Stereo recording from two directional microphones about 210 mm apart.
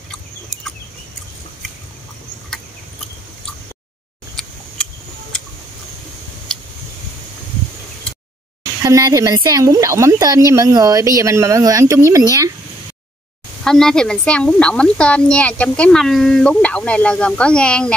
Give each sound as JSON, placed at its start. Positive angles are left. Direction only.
{"t": 4.4, "sound": "a sound", "side_deg": 0}
{"t": 8.8, "sound": "a woman's voice", "side_deg": -15}
{"t": 13.7, "sound": "a woman's voice", "side_deg": 5}